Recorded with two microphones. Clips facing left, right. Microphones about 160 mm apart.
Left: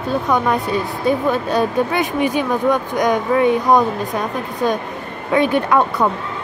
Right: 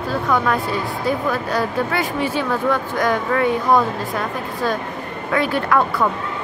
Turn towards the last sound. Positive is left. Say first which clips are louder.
# left 2 dB
turn(degrees=20)  # may be behind; listen again after turning